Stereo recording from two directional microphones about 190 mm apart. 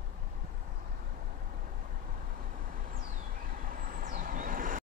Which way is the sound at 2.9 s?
45° right (ahead or behind).